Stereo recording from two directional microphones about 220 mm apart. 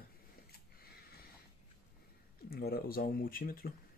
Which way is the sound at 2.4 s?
45° left (ahead or behind).